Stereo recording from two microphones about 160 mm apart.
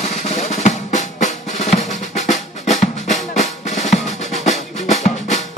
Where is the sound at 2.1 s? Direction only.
45° left (ahead or behind).